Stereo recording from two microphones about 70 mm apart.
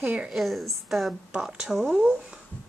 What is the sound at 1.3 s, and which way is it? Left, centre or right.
Speech, centre.